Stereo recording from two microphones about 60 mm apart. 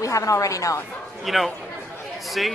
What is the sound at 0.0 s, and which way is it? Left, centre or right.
Speech, left.